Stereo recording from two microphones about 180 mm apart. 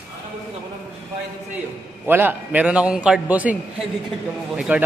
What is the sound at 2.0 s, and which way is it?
A man's voice, 10° right (ahead or behind).